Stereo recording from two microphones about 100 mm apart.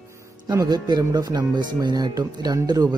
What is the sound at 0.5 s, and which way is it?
Speech, 45° right (ahead or behind).